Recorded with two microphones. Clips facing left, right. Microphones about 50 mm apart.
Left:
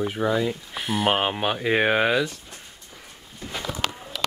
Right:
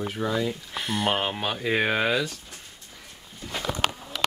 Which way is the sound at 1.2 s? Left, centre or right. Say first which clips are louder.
Left 4 dB; centre.